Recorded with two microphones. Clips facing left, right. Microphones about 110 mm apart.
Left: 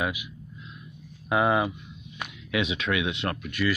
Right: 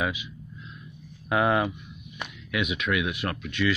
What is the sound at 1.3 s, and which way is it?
Speech, 5° left (ahead or behind).